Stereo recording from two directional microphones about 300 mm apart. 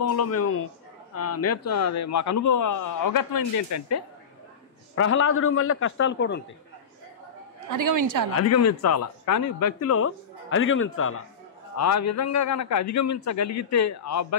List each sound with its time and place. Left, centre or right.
0.0 s a man's voice: left
4.9 s a man's voice: left
7.7 s a woman's voice: right
8.4 s speech: left
11.7 s a man's voice: left